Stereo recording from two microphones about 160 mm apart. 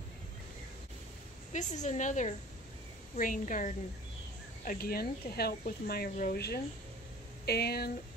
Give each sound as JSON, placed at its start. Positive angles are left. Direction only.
{"t": 1.5, "sound": "a woman's voice", "side_deg": 50}
{"t": 4.6, "sound": "speech", "side_deg": 70}